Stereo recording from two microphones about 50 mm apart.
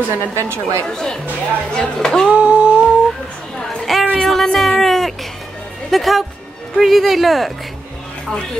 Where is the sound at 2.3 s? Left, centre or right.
Right.